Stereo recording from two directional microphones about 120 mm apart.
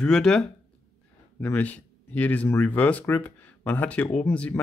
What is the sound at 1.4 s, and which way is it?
Speech, 15° left (ahead or behind).